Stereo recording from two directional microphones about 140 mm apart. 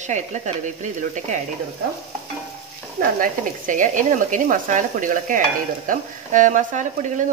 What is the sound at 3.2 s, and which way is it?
A woman's voice, 70° right (ahead or behind).